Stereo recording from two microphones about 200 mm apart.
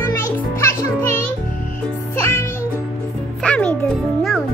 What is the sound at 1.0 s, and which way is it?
Music, 10° left (ahead or behind).